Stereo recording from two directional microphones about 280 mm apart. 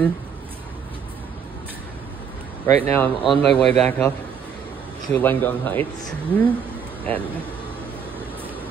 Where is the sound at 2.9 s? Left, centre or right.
Centre.